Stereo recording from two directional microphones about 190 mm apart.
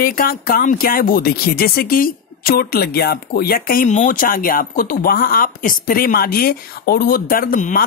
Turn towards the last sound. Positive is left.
turn(degrees=45)  # may be behind; listen again after turning